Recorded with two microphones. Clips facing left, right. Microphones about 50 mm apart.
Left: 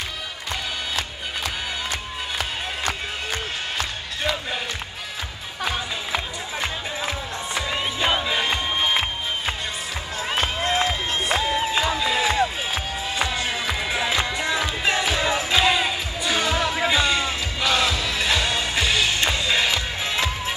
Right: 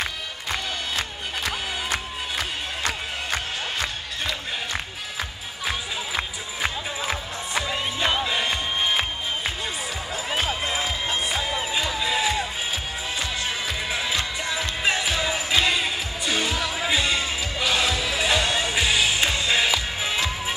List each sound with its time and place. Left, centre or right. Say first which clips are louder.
7.7 s music: left 3 dB; centre
10.3 s music: left 3 dB; centre
12.0 s music: left 2 dB; centre